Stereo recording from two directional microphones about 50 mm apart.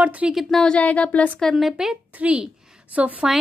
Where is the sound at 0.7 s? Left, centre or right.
Left.